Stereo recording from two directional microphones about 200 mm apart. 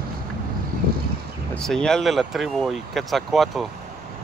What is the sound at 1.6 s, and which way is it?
Speech, 5° left (ahead or behind).